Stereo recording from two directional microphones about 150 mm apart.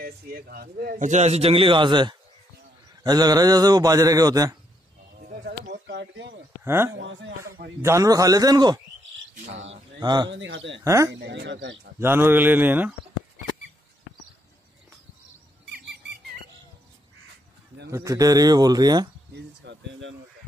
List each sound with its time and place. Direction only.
0.0 s speech: 90° right
0.9 s a man's voice: 55° right (ahead or behind); by 4.6 s 25° right (ahead or behind)
6.6 s a man's voice: 15° right (ahead or behind)
9.9 s a man's voice: 30° right (ahead or behind); by 12.9 s 10° right (ahead or behind)
17.9 s a man's voice: 20° right (ahead or behind)